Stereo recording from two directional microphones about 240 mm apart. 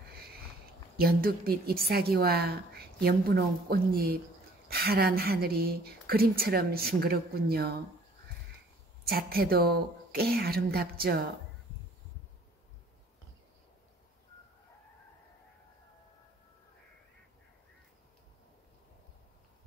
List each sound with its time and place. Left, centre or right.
0.9 s a woman's voice: right
9.0 s a woman's voice: right